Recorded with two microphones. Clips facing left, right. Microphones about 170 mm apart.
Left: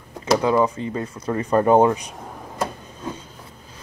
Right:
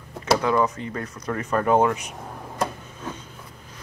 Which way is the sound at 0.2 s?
25° left (ahead or behind).